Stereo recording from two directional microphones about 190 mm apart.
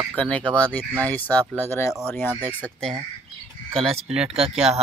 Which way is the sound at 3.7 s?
30° right (ahead or behind).